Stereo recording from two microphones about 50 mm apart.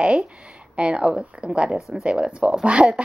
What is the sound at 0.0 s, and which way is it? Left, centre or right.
A woman's voice, right.